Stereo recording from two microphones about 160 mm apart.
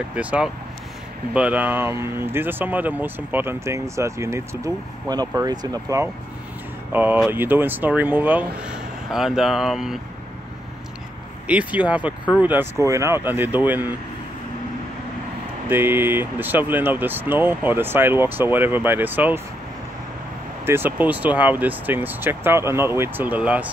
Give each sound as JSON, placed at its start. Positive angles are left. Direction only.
{"t": 0.1, "sound": "speech", "side_deg": -10}
{"t": 6.9, "sound": "speech", "side_deg": -10}
{"t": 11.4, "sound": "speech", "side_deg": -10}
{"t": 15.7, "sound": "speech", "side_deg": -15}
{"t": 20.6, "sound": "speech", "side_deg": -15}